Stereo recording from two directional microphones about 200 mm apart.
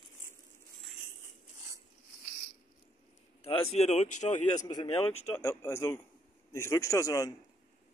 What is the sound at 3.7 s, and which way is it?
Speech, 35° left (ahead or behind).